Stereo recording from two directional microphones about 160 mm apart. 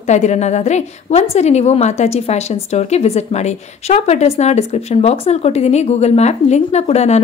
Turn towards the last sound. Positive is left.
turn(degrees=45)  # may be behind; listen again after turning